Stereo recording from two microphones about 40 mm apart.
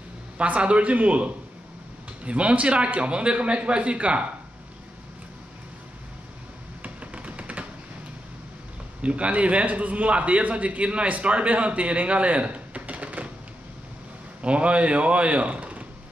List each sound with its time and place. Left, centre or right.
0.4 s a man's voice: right
6.8 s music: right
9.0 s a man's voice: right
14.4 s a man's voice: right